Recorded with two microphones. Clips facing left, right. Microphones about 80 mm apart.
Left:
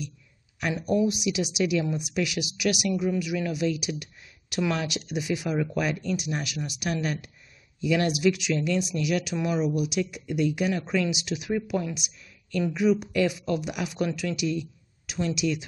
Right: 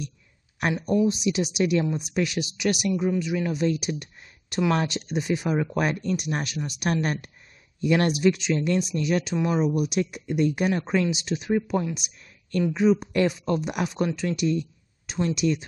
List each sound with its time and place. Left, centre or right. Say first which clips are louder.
0.6 s speech: right 3 dB; right
1.0 s speech: right 2 dB; right
3.5 s speech: right 2 dB; right
5.8 s speech: right 2 dB; right
9.8 s speech: right 2 dB; right